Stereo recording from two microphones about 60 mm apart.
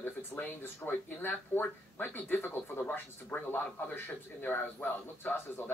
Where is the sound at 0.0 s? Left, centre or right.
Left.